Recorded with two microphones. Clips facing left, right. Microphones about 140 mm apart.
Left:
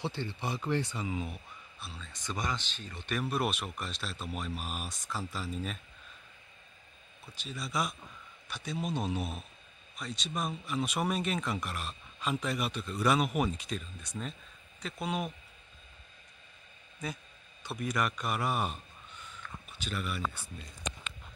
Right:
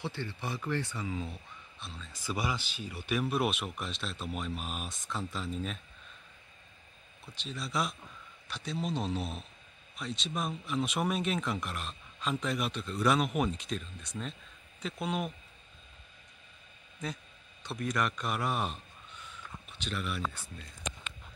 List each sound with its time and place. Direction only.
0.0 s speech: 25° left (ahead or behind)
1.8 s speech: centre (ahead or behind)
7.3 s speech: centre (ahead or behind)
17.0 s a man's voice: centre (ahead or behind)